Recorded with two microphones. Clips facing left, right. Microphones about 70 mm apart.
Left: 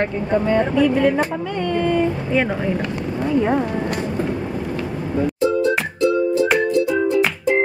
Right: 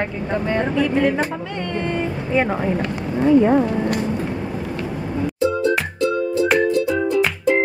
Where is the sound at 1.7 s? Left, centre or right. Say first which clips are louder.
Left 5 dB; right.